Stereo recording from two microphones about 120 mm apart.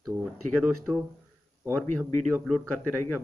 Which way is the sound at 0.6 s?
10° right (ahead or behind).